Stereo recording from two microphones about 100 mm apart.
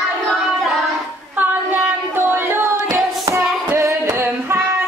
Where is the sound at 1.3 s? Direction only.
15° right (ahead or behind).